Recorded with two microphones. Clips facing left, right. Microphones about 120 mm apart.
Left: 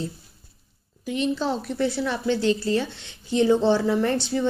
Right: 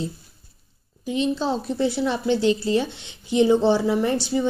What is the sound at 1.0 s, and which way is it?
A woman's voice, 25° right (ahead or behind).